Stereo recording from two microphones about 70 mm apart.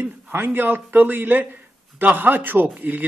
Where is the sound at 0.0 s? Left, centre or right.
Right.